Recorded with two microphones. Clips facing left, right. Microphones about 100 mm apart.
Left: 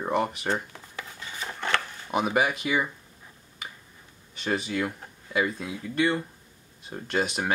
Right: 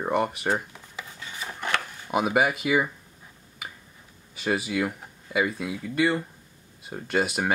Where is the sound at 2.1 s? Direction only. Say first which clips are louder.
Right 2 dB; 5° right (ahead or behind).